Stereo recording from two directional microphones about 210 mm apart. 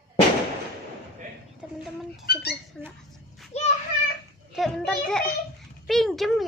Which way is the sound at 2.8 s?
Centre (ahead or behind).